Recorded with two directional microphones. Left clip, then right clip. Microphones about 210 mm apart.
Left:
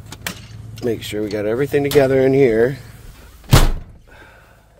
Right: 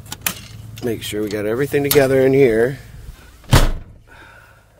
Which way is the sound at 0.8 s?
5° right (ahead or behind).